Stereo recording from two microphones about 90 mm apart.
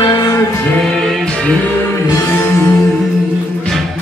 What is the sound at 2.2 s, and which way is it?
Music, 25° left (ahead or behind).